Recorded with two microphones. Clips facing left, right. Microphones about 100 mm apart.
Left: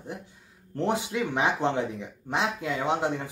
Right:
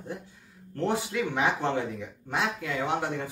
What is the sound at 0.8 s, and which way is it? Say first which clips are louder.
Speech: left 1 dB; 20° left (ahead or behind).